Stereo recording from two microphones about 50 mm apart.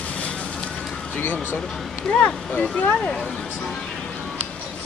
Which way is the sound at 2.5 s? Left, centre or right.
Left.